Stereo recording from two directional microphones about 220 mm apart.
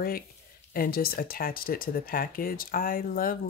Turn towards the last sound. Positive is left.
turn(degrees=40)  # may be behind; listen again after turning